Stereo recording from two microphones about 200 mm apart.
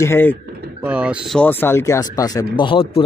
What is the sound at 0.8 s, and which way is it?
A man's voice, 5° right (ahead or behind).